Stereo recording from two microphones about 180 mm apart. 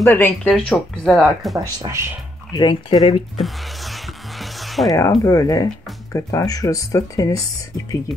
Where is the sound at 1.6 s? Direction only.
15° right (ahead or behind).